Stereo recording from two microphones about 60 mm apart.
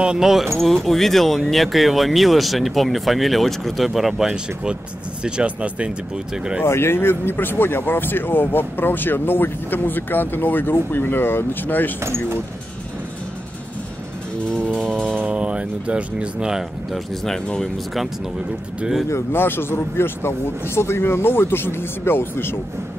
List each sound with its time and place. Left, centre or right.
0.0 s speech: centre
6.6 s speech: left
12.0 s speech: right
14.7 s music: centre
15.1 s speech: right
16.9 s speech: centre
19.3 s speech: left